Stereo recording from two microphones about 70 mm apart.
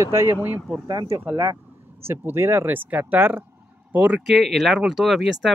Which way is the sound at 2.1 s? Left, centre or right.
Right.